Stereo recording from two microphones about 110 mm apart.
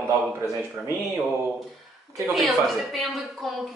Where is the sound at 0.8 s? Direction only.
10° right (ahead or behind).